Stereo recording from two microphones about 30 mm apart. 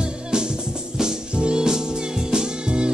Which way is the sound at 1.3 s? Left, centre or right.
Right.